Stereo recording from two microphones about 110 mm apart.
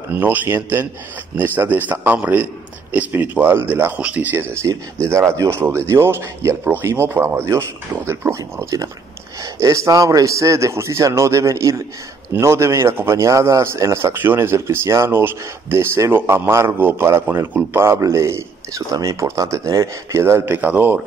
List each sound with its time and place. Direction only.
0.1 s a man's voice: 20° right (ahead or behind)